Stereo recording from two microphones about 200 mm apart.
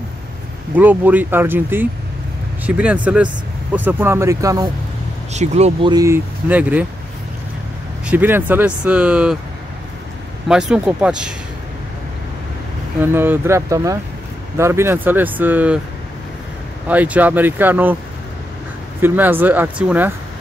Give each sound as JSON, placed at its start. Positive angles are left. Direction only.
{"t": 0.7, "sound": "speech", "side_deg": -10}
{"t": 5.3, "sound": "speech", "side_deg": -35}
{"t": 5.9, "sound": "speech", "side_deg": -15}
{"t": 8.1, "sound": "speech", "side_deg": -10}
{"t": 10.5, "sound": "speech", "side_deg": -5}
{"t": 13.0, "sound": "speech", "side_deg": -10}
{"t": 16.8, "sound": "speech", "side_deg": -10}
{"t": 18.9, "sound": "speech", "side_deg": -10}